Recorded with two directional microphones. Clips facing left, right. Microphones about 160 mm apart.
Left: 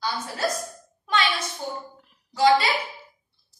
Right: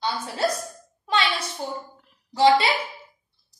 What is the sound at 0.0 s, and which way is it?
Speech, 25° right (ahead or behind).